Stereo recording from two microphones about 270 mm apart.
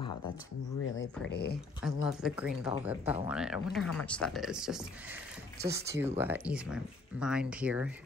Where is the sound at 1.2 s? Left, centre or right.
Left.